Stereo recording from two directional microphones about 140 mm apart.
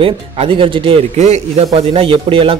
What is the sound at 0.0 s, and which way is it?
Speech, 40° right (ahead or behind).